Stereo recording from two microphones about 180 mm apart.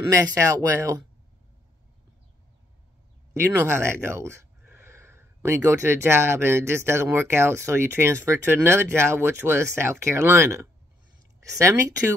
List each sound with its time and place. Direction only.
0.1 s speech: 15° right (ahead or behind)
3.3 s speech: 15° right (ahead or behind)